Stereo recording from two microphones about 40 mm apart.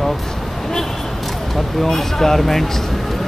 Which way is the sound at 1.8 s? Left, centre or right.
Centre.